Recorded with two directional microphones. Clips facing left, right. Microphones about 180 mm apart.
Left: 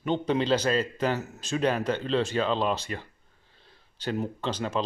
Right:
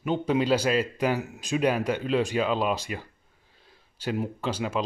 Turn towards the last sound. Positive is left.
turn(degrees=-10)  # may be behind; listen again after turning